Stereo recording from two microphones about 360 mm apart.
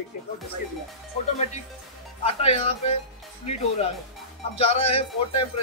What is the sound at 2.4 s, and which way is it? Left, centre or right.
Speech, centre.